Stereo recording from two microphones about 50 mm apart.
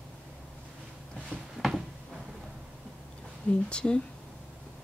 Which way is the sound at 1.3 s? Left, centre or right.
Right.